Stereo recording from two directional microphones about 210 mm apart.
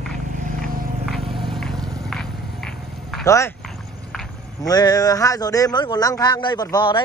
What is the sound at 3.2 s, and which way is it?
Speech, 15° left (ahead or behind).